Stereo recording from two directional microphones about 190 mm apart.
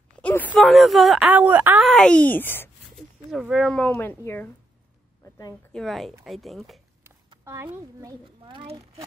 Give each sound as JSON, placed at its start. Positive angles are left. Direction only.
{"t": 0.2, "sound": "a sound", "side_deg": 10}
{"t": 0.6, "sound": "a woman's voice", "side_deg": 0}
{"t": 3.3, "sound": "a woman's voice", "side_deg": 0}
{"t": 5.7, "sound": "a woman's voice", "side_deg": 0}
{"t": 7.2, "sound": "a woman's voice", "side_deg": -15}